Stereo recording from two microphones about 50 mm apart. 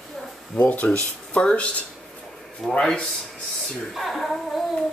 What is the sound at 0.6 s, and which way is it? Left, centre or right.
Speech, left.